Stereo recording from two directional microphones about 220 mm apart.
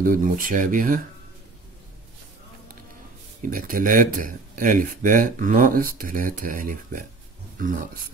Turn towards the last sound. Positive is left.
turn(degrees=-35)  # may be behind; listen again after turning